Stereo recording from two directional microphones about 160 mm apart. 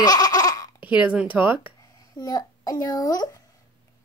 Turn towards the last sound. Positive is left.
turn(degrees=25)  # may be behind; listen again after turning